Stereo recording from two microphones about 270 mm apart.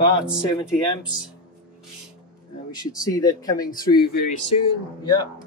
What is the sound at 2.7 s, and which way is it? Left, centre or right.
Speech, centre.